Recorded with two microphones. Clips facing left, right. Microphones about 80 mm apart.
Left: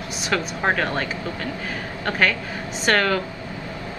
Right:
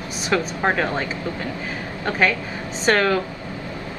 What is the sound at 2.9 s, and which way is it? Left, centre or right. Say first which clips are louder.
Speech: right 1 dB; centre.